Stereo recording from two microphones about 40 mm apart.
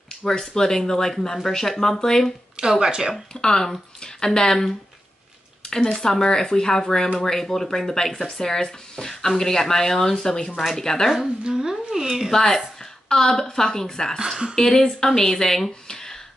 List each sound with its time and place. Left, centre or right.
0.1 s speech: centre
2.5 s speech: centre
3.3 s speech: centre
5.6 s a sound: centre
6.0 s speech: centre
11.4 s a woman's voice: centre
11.7 s a sound: centre
12.3 s speech: centre